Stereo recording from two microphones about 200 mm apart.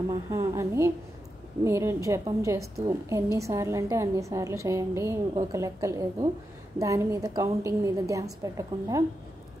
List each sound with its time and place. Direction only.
0.1 s a woman's voice: 15° right (ahead or behind)